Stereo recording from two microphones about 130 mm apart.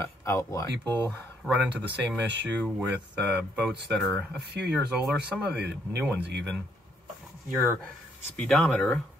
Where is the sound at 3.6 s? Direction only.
5° right (ahead or behind).